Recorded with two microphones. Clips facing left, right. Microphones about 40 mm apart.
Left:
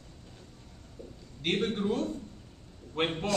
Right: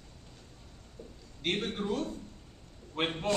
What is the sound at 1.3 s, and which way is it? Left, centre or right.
A man's voice, centre.